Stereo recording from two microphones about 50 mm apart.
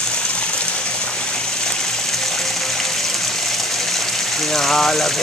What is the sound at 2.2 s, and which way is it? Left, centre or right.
Music, centre.